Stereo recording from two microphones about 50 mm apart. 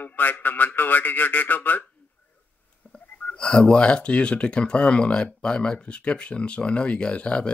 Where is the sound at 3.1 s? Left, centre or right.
Left.